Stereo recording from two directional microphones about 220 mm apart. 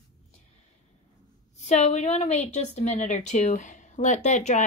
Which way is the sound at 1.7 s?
30° left (ahead or behind).